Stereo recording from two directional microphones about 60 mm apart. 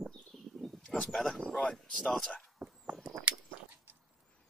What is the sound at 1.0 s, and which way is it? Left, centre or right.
Speech, centre.